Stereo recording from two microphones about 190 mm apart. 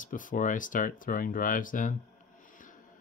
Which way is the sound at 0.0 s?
45° left (ahead or behind).